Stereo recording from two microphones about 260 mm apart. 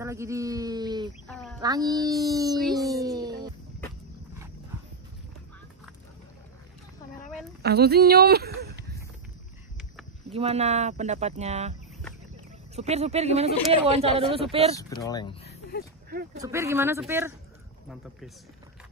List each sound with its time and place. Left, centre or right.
0.0 s speech: centre
1.2 s speech: centre
1.6 s speech: centre
2.9 s a sound: centre
7.6 s speech: right
10.3 s speech: right
12.7 s speech: right
14.8 s speech: centre
16.3 s speech: centre